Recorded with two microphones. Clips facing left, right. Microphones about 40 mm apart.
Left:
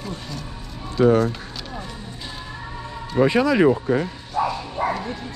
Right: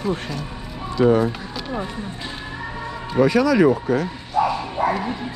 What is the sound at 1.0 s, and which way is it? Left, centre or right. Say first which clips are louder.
Speech: even; centre.